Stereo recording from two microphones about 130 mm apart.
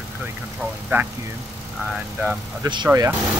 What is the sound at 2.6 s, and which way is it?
Speech, 30° right (ahead or behind).